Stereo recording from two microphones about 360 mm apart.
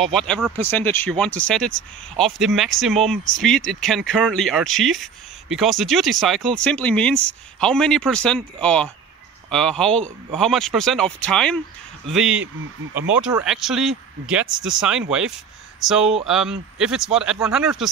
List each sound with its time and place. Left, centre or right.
0.3 s speech: centre
14.5 s speech: right
14.8 s speech: centre